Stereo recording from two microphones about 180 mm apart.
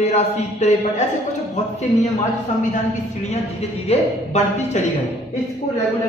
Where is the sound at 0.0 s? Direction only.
35° left (ahead or behind).